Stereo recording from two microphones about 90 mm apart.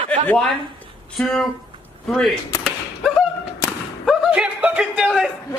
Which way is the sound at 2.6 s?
Centre (ahead or behind).